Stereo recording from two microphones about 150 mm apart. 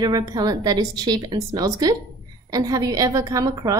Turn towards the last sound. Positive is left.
turn(degrees=-25)  # may be behind; listen again after turning